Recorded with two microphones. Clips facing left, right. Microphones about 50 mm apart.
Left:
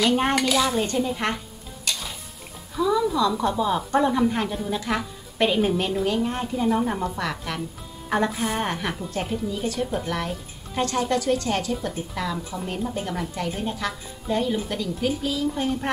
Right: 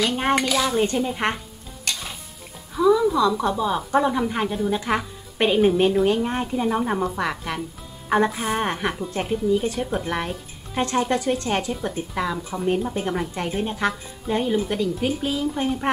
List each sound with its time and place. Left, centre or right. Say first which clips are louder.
0.0 s speech: even; centre
0.7 s a woman's voice: right 2 dB; centre
2.9 s a woman's voice: right 4 dB; centre
4.7 s a woman's voice: right 3 dB; right
14.2 s a woman's voice: right 2 dB; centre